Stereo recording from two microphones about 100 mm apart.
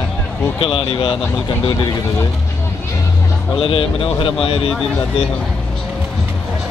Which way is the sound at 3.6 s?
65° left (ahead or behind).